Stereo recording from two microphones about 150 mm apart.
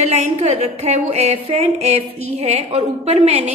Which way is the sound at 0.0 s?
50° right (ahead or behind).